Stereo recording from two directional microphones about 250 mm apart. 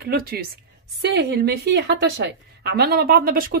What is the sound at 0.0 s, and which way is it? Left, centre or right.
Speech, right.